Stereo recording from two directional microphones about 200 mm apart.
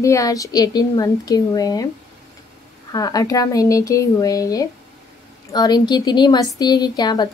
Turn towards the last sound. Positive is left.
turn(degrees=20)  # may be behind; listen again after turning